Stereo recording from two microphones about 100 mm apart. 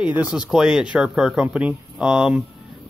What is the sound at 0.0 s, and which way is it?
Speech, 10° right (ahead or behind).